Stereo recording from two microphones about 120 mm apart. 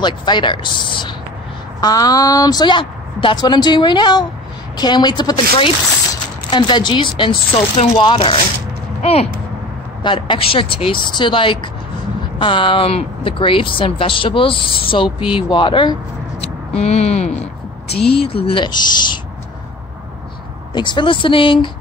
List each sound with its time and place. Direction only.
0.0 s a woman's voice: 40° left (ahead or behind)
6.5 s a woman's voice: 40° left (ahead or behind)
9.0 s speech: 55° left (ahead or behind)
10.0 s speech: 45° left (ahead or behind)
16.7 s speech: 60° left (ahead or behind); by 19.1 s 40° left (ahead or behind)
20.7 s speech: 40° left (ahead or behind)